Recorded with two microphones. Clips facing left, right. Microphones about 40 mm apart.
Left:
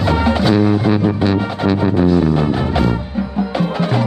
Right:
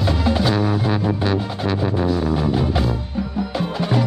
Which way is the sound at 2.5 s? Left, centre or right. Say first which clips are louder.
Left 4 dB; left.